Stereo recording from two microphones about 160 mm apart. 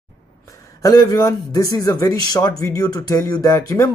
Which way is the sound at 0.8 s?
25° left (ahead or behind).